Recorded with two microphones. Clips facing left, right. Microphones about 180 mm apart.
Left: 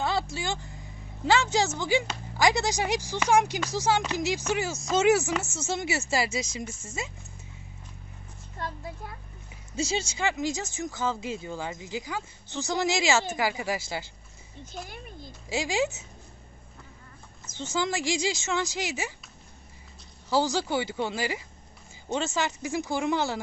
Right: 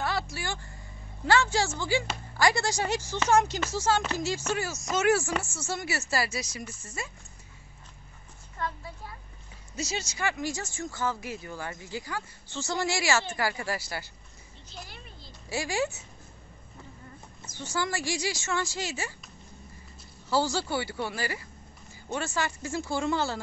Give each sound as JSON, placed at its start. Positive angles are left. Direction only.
{"t": 0.0, "sound": "a sound", "side_deg": 20}
{"t": 1.2, "sound": "speech", "side_deg": 15}
{"t": 9.8, "sound": "speech", "side_deg": 30}
{"t": 14.6, "sound": "speech", "side_deg": 50}
{"t": 15.5, "sound": "speech", "side_deg": 20}
{"t": 17.6, "sound": "speech", "side_deg": 20}
{"t": 20.2, "sound": "speech", "side_deg": 15}